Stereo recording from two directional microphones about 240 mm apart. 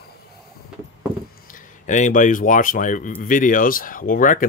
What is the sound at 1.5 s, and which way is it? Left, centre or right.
Speech, left.